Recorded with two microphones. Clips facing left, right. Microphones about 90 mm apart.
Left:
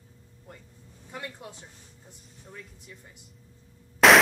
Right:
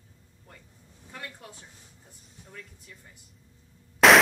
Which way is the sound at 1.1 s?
20° left (ahead or behind).